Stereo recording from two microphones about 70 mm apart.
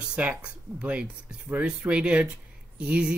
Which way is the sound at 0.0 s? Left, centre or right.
Centre.